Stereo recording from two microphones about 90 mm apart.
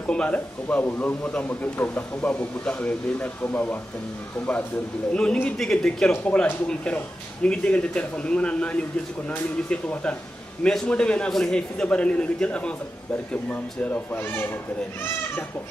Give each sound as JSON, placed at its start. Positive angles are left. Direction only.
{"t": 0.0, "sound": "a man's voice", "side_deg": 10}
{"t": 5.1, "sound": "a man's voice", "side_deg": 10}